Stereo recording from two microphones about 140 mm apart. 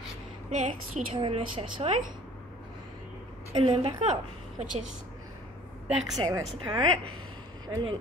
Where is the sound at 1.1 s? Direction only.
40° right (ahead or behind).